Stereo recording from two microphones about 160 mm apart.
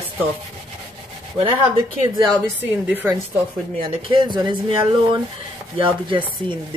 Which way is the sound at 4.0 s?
30° right (ahead or behind).